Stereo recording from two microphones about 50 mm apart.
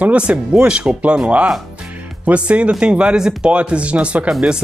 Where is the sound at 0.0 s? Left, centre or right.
Right.